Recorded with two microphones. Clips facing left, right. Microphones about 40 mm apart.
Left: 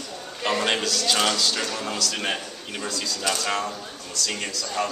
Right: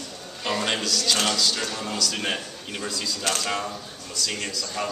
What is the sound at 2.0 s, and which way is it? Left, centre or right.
A man's voice, centre.